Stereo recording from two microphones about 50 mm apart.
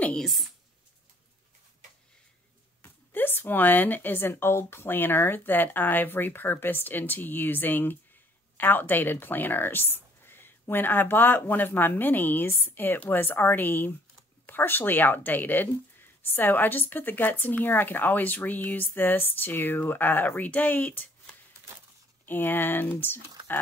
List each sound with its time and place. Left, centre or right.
0.2 s speech: centre
2.8 s a woman's voice: left